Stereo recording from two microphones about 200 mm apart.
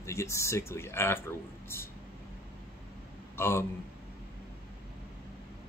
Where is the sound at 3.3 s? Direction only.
10° left (ahead or behind).